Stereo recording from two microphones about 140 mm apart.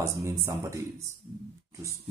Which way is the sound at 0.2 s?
25° right (ahead or behind).